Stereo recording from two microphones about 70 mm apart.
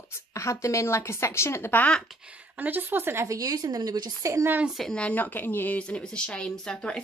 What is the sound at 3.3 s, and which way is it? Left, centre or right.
Speech, right.